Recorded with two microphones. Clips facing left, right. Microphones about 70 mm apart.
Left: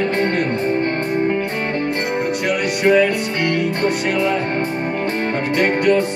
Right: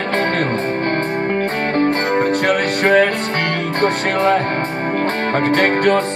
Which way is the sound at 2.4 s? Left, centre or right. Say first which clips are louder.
Right 1 dB; right.